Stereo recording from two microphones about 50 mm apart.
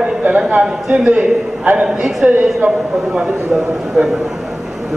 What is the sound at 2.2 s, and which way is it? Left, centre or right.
Speech, right.